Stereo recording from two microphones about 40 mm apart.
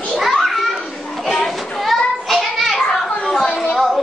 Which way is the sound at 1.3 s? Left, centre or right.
Centre.